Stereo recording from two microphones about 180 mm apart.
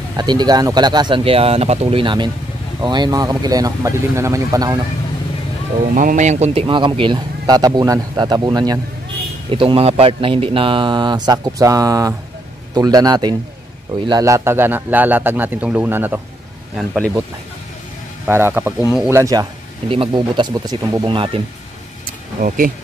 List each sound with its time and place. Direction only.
0.1 s speech: 25° right (ahead or behind)
5.8 s speech: 45° right (ahead or behind); by 17.2 s centre (ahead or behind)
18.2 s speech: 10° right (ahead or behind)
19.9 s speech: 25° right (ahead or behind)
22.4 s speech: 50° right (ahead or behind)